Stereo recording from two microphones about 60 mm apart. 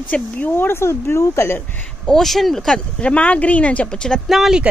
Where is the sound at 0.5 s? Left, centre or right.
Left.